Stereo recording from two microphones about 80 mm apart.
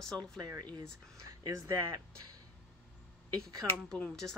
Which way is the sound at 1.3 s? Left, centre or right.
Right.